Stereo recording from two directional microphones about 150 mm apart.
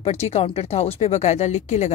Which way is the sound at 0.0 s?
45° left (ahead or behind).